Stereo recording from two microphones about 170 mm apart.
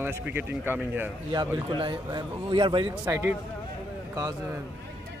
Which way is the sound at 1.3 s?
30° right (ahead or behind).